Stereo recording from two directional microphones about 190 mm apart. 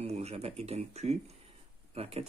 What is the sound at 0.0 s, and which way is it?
Speech, 35° right (ahead or behind).